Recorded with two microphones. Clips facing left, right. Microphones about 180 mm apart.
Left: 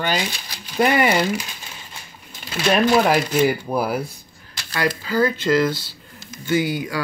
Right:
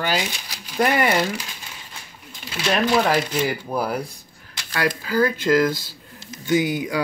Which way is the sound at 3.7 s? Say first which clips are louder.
Left 2 dB; 10° left (ahead or behind).